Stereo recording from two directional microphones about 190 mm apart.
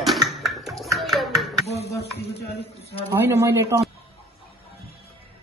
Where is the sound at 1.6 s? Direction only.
35° left (ahead or behind).